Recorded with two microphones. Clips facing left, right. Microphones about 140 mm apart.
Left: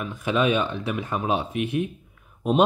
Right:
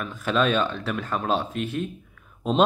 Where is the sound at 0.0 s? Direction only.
15° left (ahead or behind).